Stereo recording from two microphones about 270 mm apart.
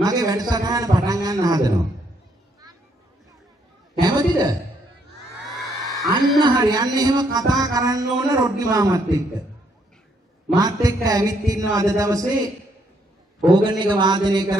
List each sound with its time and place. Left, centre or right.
0.0 s a man's voice: centre
4.0 s a sound: centre
5.9 s a sound: centre
6.4 s a man's voice: centre
10.5 s a man's voice: centre
13.7 s a man's voice: centre